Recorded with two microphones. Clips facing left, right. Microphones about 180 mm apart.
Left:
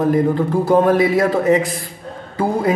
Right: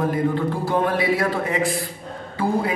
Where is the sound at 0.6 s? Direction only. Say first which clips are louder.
Left 8 dB; 40° left (ahead or behind).